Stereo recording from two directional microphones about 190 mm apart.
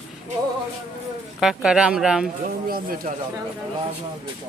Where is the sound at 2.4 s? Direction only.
50° right (ahead or behind).